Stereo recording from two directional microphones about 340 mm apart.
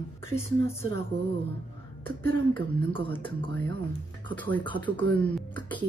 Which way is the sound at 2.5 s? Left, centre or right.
Centre.